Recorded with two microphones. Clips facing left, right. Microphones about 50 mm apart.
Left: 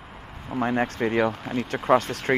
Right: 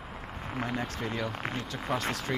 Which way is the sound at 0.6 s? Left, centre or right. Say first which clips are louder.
Left 10 dB; left.